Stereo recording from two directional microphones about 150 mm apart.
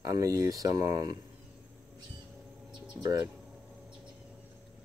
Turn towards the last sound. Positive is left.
turn(degrees=-25)  # may be behind; listen again after turning